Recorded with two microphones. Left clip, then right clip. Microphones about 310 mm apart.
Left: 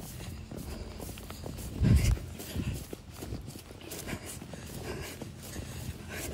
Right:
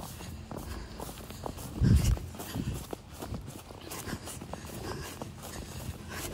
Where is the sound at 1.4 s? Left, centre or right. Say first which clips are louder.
Right 1 dB; centre.